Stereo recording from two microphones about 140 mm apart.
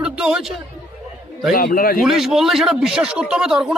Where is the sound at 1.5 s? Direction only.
90° left.